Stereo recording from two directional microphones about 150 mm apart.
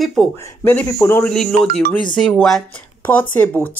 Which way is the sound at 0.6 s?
15° left (ahead or behind).